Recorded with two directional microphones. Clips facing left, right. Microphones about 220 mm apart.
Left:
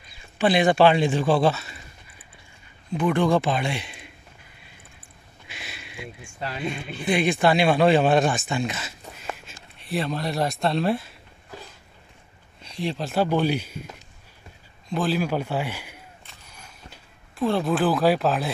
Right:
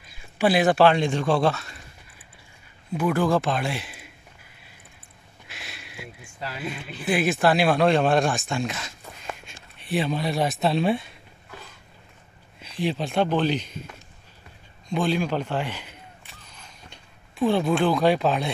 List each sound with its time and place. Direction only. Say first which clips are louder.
0.2 s speech: even; 5° right (ahead or behind)
5.5 s a sound: left 2 dB; centre (ahead or behind)
7.0 s speech: left 1 dB; 5° right (ahead or behind)
12.5 s speech: right 2 dB; centre (ahead or behind)
14.9 s a man's voice: even; 5° left (ahead or behind)
16.4 s a sound: left 2 dB; 10° left (ahead or behind)